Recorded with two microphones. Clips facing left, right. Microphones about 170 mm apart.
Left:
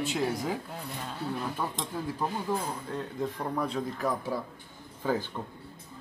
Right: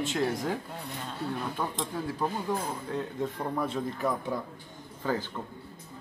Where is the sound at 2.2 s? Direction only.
Centre (ahead or behind).